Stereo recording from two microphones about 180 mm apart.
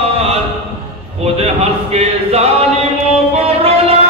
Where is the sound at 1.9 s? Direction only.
35° right (ahead or behind).